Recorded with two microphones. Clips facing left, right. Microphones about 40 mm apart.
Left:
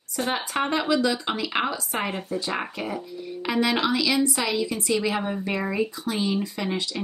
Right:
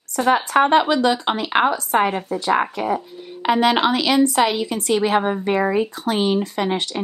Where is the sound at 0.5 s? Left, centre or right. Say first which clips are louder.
Right 7 dB; right.